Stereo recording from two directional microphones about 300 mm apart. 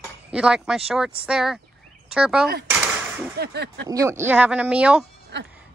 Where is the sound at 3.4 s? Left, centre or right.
Right.